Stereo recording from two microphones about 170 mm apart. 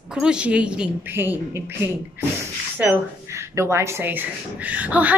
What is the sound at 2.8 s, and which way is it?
A woman's voice, 10° right (ahead or behind).